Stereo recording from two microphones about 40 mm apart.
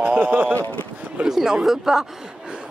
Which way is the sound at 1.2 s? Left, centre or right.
Centre.